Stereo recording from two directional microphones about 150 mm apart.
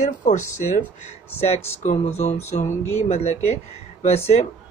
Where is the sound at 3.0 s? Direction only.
45° left (ahead or behind).